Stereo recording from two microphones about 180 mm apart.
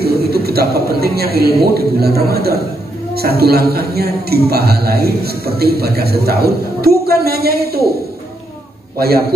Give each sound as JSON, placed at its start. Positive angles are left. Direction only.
{"t": 0.0, "sound": "a man's voice", "side_deg": -60}
{"t": 8.9, "sound": "a man's voice", "side_deg": -60}